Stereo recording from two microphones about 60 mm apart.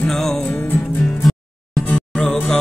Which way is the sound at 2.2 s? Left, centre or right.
Left.